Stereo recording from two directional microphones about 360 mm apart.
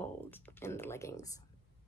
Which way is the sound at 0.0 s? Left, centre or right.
Centre.